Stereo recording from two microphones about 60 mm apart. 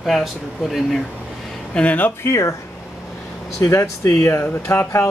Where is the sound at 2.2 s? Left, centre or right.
Left.